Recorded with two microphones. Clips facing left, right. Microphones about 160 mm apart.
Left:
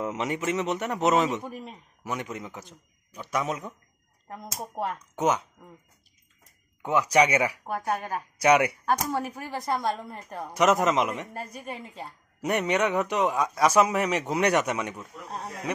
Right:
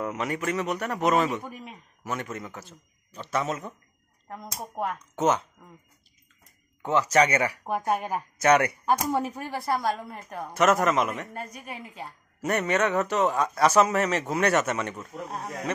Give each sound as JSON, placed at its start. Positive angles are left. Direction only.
{"t": 0.0, "sound": "a man's voice", "side_deg": 20}
{"t": 4.3, "sound": "a woman's voice", "side_deg": 0}
{"t": 4.9, "sound": "a man's voice", "side_deg": 10}
{"t": 6.8, "sound": "a man's voice", "side_deg": 10}
{"t": 7.6, "sound": "speech", "side_deg": -20}
{"t": 8.4, "sound": "a man's voice", "side_deg": 10}
{"t": 8.8, "sound": "speech", "side_deg": -15}
{"t": 9.7, "sound": "a woman's voice", "side_deg": -5}
{"t": 10.5, "sound": "a man's voice", "side_deg": 15}
{"t": 11.5, "sound": "a woman's voice", "side_deg": 0}
{"t": 12.4, "sound": "a man's voice", "side_deg": 15}
{"t": 15.0, "sound": "a woman's voice", "side_deg": 0}